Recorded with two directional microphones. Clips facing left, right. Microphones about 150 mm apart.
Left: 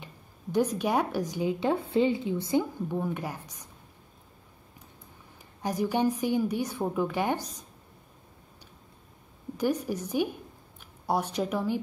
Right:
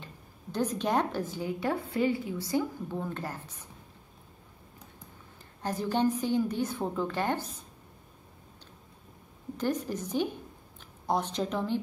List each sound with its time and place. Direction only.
0.0 s speech: 10° left (ahead or behind)
5.6 s speech: 10° left (ahead or behind)
9.6 s speech: 10° left (ahead or behind)